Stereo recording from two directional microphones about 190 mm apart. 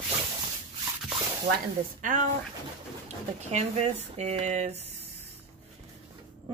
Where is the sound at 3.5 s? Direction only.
35° right (ahead or behind).